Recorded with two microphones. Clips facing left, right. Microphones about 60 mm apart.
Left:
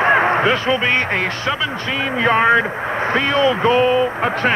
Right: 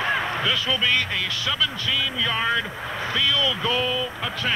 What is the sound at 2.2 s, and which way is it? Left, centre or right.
Speech, left.